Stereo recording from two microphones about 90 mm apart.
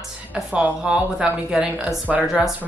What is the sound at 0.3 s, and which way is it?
Speech, 15° right (ahead or behind).